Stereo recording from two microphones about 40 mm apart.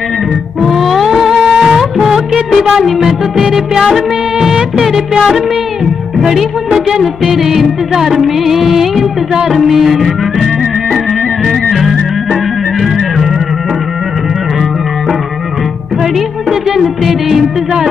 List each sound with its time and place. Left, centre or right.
0.6 s music: centre
6.3 s music: centre
16.0 s music: centre